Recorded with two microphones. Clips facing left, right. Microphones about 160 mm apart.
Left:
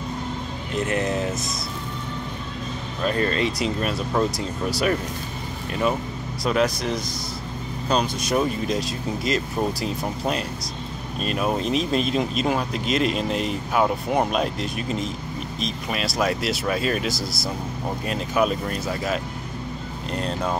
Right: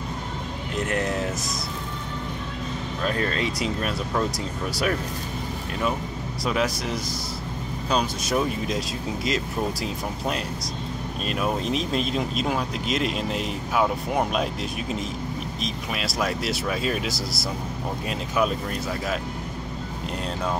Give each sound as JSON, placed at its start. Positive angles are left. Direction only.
{"t": 0.8, "sound": "speech", "side_deg": 5}
{"t": 3.1, "sound": "speech", "side_deg": 0}
{"t": 6.4, "sound": "speech", "side_deg": -5}
{"t": 20.2, "sound": "speech", "side_deg": -5}